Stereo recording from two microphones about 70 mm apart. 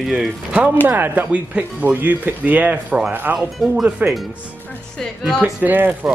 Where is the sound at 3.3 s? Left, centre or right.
Centre.